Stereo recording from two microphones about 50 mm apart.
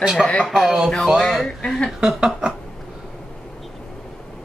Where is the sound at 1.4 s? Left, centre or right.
Centre.